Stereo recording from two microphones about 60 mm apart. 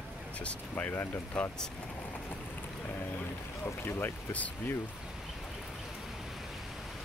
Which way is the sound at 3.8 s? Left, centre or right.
Left.